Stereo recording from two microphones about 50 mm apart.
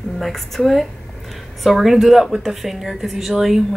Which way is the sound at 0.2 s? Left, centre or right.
Centre.